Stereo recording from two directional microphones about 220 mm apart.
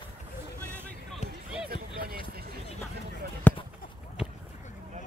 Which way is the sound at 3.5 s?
5° left (ahead or behind).